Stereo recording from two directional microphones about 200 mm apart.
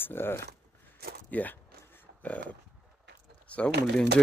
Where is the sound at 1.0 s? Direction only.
50° right (ahead or behind).